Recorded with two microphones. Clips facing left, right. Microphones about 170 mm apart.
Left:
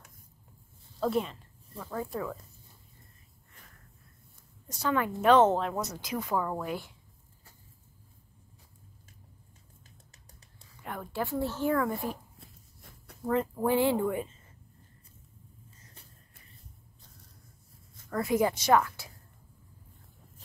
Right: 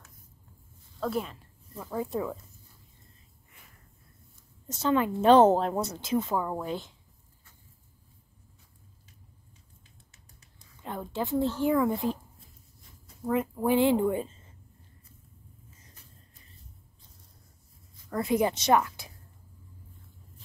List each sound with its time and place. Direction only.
0.9 s speech: centre (ahead or behind)
2.0 s a woman's voice: 20° right (ahead or behind)
4.6 s a woman's voice: 25° right (ahead or behind)
10.8 s a woman's voice: 25° right (ahead or behind)
12.4 s walk: 65° left (ahead or behind)
13.3 s a woman's voice: 15° right (ahead or behind)
18.1 s a woman's voice: 20° right (ahead or behind)